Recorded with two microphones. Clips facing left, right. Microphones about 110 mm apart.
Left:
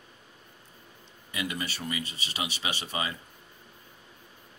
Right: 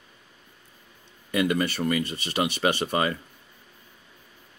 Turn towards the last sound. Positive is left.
turn(degrees=-50)  # may be behind; listen again after turning